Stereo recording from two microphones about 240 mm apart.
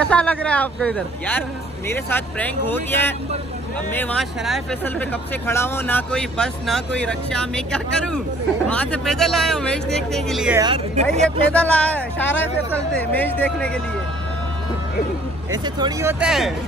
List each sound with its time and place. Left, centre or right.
0.0 s speech: centre
10.6 s speech: right
11.1 s speech: centre
15.5 s speech: centre